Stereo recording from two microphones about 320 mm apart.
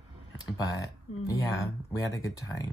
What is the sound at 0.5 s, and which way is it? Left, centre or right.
Speech, centre.